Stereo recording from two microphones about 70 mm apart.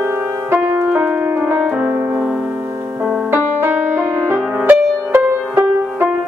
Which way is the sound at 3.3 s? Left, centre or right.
Right.